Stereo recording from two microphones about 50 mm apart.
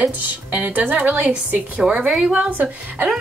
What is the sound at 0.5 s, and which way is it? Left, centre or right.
A woman's voice, right.